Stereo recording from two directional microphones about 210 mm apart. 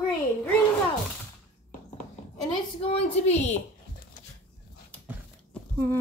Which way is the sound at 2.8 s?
30° left (ahead or behind).